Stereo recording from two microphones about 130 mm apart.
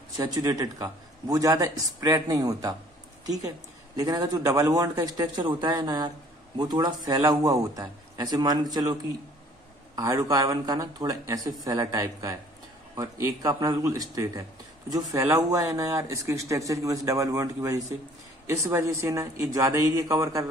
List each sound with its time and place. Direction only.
0.2 s speech: 30° right (ahead or behind)
3.9 s speech: 30° right (ahead or behind)
9.9 s speech: 25° right (ahead or behind)